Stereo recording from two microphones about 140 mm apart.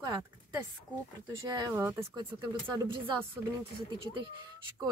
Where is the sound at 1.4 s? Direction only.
25° right (ahead or behind).